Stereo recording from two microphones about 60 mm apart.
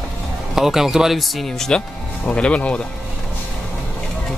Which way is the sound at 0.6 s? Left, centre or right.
Centre.